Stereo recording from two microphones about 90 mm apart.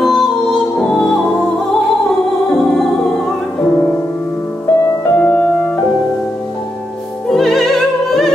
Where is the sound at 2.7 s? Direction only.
5° left (ahead or behind).